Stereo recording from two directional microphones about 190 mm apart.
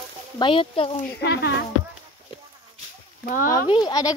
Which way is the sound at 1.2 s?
65° left (ahead or behind).